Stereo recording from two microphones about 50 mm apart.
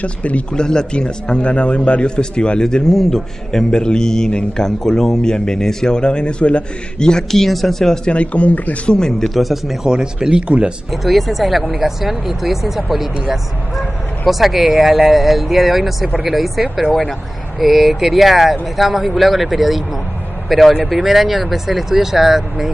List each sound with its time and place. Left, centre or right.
0.0 s a man's voice: left
0.6 s a man's voice: centre
4.6 s a man's voice: centre
8.1 s a man's voice: left
8.9 s a man's voice: centre
9.3 s speech: centre
9.9 s speech: centre
10.9 s speech: centre